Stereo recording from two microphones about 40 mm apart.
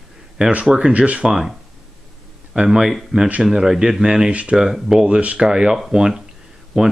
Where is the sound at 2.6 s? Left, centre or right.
Centre.